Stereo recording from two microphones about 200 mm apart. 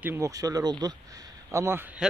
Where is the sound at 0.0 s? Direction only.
15° right (ahead or behind).